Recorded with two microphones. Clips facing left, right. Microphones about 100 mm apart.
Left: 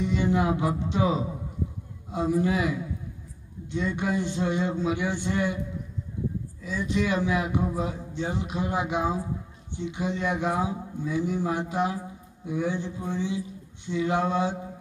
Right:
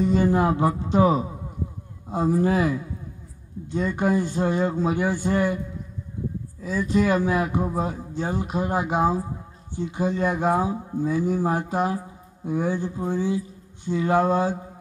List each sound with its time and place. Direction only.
0.0 s speech: 40° right (ahead or behind)
6.9 s speech: 40° right (ahead or behind)
13.8 s a sound: 40° right (ahead or behind)